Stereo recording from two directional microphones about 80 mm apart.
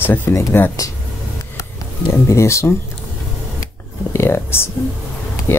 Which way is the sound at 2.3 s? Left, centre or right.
Left.